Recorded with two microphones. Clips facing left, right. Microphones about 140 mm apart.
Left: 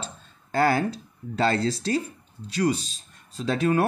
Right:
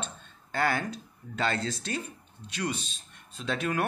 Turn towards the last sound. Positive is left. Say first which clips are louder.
# left 7 dB
turn(degrees=35)  # may be behind; listen again after turning